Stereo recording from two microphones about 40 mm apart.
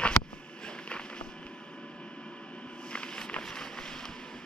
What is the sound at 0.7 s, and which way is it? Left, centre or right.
Walk, left.